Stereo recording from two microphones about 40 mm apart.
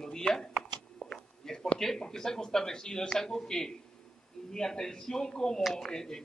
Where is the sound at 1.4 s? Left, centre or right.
Centre.